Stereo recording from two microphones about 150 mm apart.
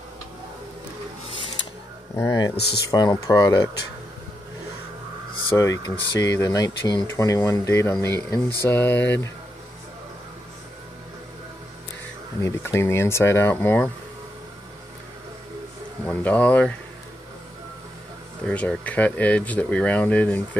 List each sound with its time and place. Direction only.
2.1 s speech: 20° left (ahead or behind)
2.5 s speech: 90° left
2.9 s speech: 25° left (ahead or behind)
5.6 s speech: 20° left (ahead or behind)
12.4 s speech: 20° left (ahead or behind)
16.1 s speech: 10° left (ahead or behind)
18.4 s speech: 5° left (ahead or behind)